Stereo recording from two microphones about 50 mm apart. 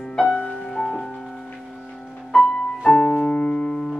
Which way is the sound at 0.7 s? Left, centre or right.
Centre.